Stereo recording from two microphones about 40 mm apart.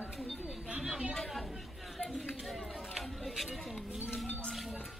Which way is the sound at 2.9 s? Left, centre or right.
Centre.